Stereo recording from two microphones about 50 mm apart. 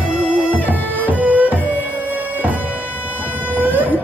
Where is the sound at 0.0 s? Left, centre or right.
Right.